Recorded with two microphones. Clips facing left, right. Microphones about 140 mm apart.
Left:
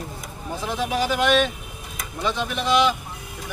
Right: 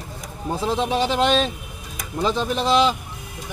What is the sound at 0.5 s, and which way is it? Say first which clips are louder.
Speech: right 3 dB; 30° right (ahead or behind).